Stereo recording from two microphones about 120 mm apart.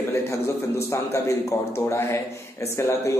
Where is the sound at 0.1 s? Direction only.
25° left (ahead or behind).